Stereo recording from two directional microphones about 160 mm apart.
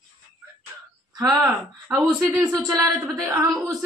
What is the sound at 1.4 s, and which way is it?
Speech, 15° right (ahead or behind).